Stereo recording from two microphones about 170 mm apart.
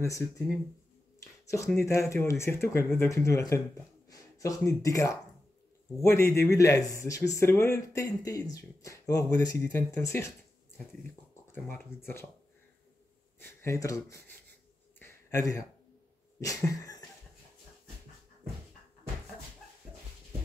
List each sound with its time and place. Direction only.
0.0 s speech: 15° left (ahead or behind)
1.2 s a sound: 20° left (ahead or behind)
1.8 s speech: 15° left (ahead or behind)
11.5 s speech: 15° left (ahead or behind)
13.4 s speech: 15° left (ahead or behind)
15.0 s a sound: 15° left (ahead or behind)